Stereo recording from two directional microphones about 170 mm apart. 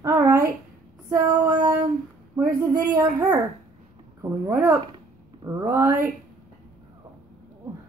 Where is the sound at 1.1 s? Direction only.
20° right (ahead or behind).